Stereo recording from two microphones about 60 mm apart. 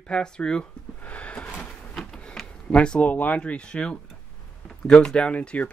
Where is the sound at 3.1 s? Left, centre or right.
Left.